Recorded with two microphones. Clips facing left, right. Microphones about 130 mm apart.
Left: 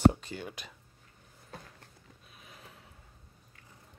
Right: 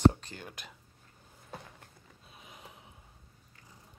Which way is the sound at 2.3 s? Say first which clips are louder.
Right 2 dB; 20° right (ahead or behind).